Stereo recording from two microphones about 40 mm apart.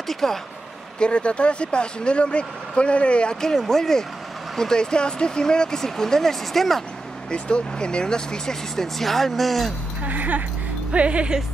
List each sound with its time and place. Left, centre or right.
0.1 s speech: centre
0.9 s speech: left
3.3 s speech: centre
7.2 s speech: left; by 9.8 s centre
10.0 s speech: right
10.9 s speech: right